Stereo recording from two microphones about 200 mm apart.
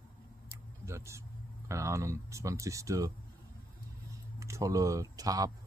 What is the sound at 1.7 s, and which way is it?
Speech, 15° right (ahead or behind).